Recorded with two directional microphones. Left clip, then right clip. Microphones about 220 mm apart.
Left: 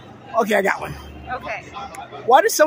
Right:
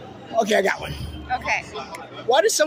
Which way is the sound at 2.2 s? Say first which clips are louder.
Left 4 dB; 30° left (ahead or behind).